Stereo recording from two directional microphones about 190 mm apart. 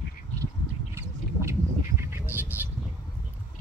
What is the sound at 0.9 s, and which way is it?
Bird, 15° right (ahead or behind).